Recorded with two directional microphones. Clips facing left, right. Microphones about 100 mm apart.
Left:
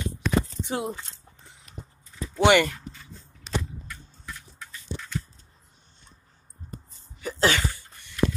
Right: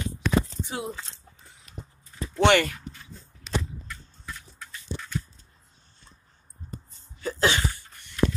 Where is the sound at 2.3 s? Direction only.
10° left (ahead or behind).